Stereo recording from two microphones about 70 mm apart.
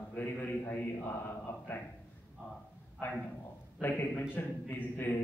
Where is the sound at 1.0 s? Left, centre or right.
Left.